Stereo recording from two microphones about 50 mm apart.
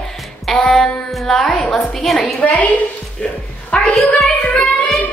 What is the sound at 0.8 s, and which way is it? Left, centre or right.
Speech, centre.